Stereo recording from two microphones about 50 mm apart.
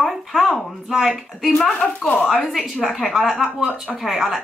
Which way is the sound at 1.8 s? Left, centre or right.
Left.